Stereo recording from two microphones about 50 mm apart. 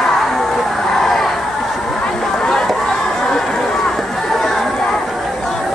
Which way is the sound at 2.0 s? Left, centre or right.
Centre.